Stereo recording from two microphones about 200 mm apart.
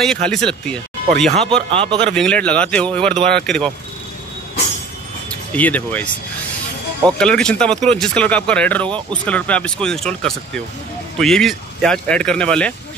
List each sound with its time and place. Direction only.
0.0 s speech: centre (ahead or behind)
1.7 s a man's voice: 30° right (ahead or behind)
2.1 s speech: 5° left (ahead or behind)
5.3 s speech: 10° left (ahead or behind)
7.1 s speech: 5° left (ahead or behind)